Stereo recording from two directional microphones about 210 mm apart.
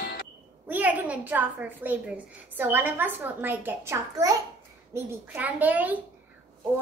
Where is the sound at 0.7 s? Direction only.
10° right (ahead or behind).